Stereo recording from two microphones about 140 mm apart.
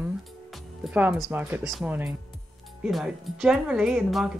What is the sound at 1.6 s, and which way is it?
A woman's voice, centre (ahead or behind).